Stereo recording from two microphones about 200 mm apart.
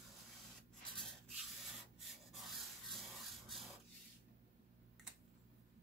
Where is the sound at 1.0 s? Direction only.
Centre (ahead or behind).